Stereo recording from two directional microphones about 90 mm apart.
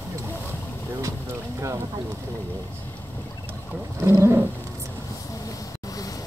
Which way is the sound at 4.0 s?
30° right (ahead or behind).